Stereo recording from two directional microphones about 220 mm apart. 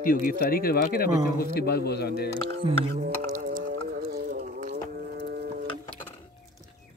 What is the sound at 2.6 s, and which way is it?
Speech, 20° right (ahead or behind).